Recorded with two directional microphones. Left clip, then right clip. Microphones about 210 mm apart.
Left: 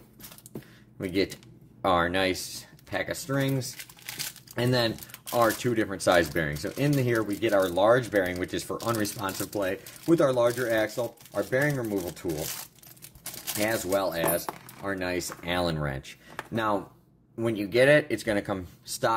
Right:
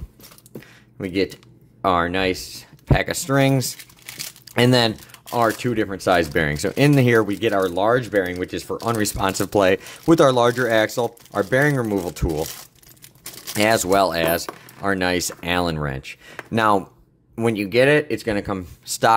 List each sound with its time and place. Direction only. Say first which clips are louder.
0.9 s speech: right 5 dB; 25° right (ahead or behind)
2.9 s speech: right 10 dB; 40° right (ahead or behind)
5.3 s speech: right 4 dB; 30° right (ahead or behind)
6.3 s speech: right 9 dB; 40° right (ahead or behind)
7.6 s speech: right 3 dB; 25° right (ahead or behind)
8.8 s speech: right 9 dB; 35° right (ahead or behind)
13.6 s speech: right 10 dB; 50° right (ahead or behind); by 16.2 s 30° right (ahead or behind)
16.5 s speech: right 10 dB; 45° right (ahead or behind); by 18.6 s 25° right (ahead or behind)
18.9 s speech: right 10 dB; 40° right (ahead or behind)